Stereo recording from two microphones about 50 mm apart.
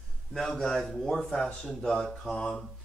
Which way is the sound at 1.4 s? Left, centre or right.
Left.